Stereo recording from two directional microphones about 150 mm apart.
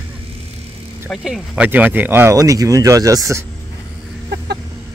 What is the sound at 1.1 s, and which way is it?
Speech, centre (ahead or behind).